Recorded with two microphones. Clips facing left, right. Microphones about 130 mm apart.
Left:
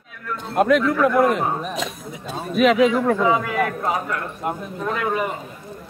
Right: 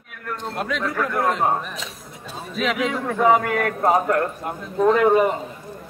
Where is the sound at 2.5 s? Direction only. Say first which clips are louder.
Left 8 dB; 55° left (ahead or behind).